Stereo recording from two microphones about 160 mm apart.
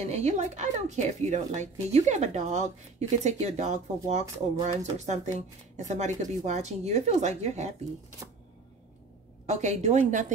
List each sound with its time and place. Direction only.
0.1 s speech: 45° right (ahead or behind)
9.5 s speech: 45° right (ahead or behind)